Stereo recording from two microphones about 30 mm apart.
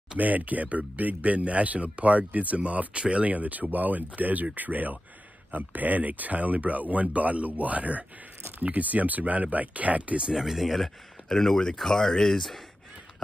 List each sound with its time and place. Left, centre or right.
0.2 s speech: right
2.9 s speech: right
3.3 s speech: right
5.5 s speech: right
10.3 s speech: centre
10.8 s speech: centre